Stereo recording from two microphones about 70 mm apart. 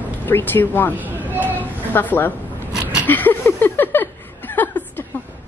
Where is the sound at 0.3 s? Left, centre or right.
Left.